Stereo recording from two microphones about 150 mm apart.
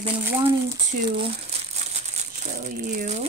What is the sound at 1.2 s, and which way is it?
Crumpling, 45° right (ahead or behind).